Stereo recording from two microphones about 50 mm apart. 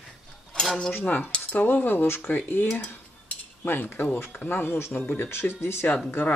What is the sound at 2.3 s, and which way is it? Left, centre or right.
Cutlery, left.